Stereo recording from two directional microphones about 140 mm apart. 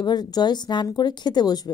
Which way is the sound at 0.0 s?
30° left (ahead or behind).